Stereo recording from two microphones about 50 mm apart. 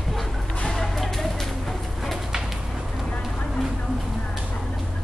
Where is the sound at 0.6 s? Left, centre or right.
Centre.